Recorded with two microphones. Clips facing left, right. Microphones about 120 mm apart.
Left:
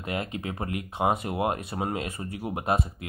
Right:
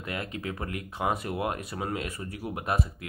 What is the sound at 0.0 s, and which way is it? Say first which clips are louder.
Speech: left 3 dB; 25° left (ahead or behind).